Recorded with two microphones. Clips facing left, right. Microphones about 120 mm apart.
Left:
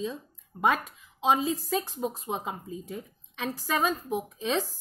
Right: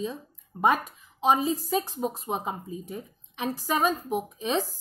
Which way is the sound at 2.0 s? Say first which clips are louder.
Right 2 dB; 15° right (ahead or behind).